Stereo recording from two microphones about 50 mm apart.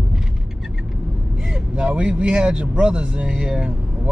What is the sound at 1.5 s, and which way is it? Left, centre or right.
Speech, centre.